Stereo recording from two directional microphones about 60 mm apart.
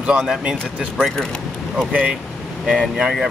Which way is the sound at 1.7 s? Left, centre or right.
Right.